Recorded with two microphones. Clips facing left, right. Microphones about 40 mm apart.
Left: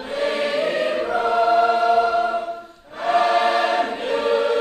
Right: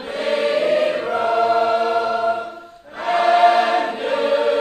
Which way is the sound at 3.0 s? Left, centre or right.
Centre.